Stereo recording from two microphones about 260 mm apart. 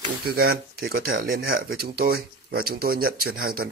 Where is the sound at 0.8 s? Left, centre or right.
Right.